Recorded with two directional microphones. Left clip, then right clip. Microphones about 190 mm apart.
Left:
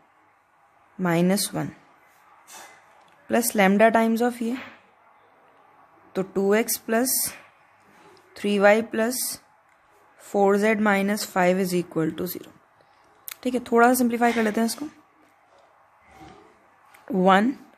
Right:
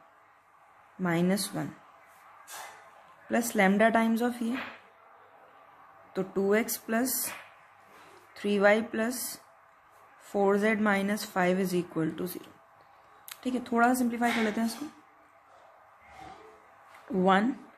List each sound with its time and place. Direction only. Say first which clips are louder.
1.0 s speech: left 6 dB; 40° left (ahead or behind)
3.3 s speech: left 6 dB; 40° left (ahead or behind)
6.1 s speech: left 5 dB; 35° left (ahead or behind)
8.3 s speech: left 6 dB; 35° left (ahead or behind)
17.1 s speech: left 6 dB; 40° left (ahead or behind)